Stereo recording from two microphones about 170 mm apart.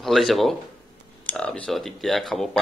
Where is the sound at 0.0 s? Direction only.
Centre (ahead or behind).